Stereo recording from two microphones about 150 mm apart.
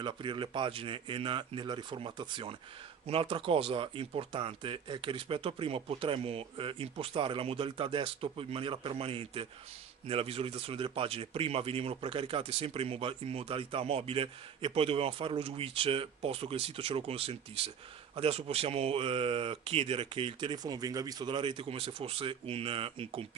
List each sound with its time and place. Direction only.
0.0 s speech: 35° right (ahead or behind)